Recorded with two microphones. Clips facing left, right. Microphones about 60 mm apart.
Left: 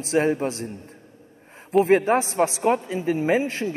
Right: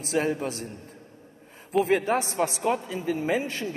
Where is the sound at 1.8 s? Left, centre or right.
Left.